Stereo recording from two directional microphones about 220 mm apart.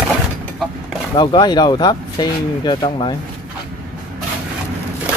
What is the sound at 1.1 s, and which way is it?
Speech, 20° left (ahead or behind).